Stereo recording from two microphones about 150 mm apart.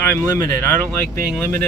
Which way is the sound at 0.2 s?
20° left (ahead or behind).